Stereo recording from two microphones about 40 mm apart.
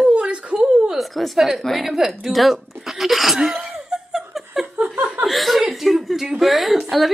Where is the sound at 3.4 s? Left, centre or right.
Centre.